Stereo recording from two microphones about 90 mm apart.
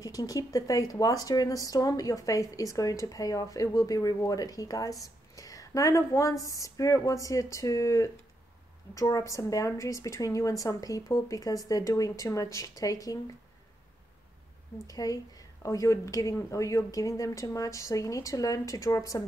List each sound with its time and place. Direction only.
0.0 s speech: 40° left (ahead or behind)
14.9 s speech: 45° left (ahead or behind)